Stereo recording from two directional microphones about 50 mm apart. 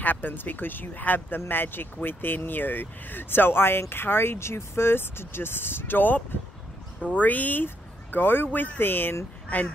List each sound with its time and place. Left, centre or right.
0.0 s speech: left
7.0 s speech: left
9.5 s speech: left